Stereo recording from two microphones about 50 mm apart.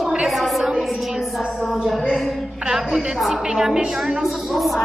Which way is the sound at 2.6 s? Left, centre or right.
Centre.